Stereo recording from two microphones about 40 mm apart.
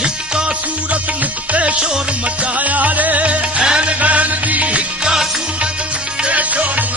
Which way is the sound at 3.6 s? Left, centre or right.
Right.